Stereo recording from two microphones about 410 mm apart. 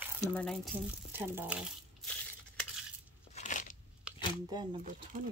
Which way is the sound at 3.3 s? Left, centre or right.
Centre.